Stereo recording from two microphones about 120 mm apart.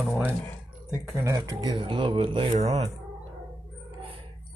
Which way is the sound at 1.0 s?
25° right (ahead or behind).